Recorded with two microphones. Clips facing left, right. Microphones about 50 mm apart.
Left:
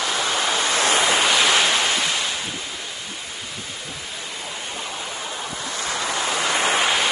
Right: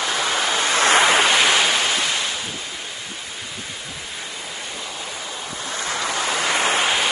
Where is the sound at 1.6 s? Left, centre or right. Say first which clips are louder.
Even; centre.